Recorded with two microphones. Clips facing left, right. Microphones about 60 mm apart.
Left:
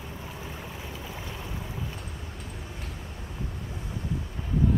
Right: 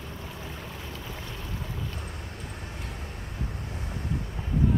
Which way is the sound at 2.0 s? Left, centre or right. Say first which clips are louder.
Right 1 dB; right.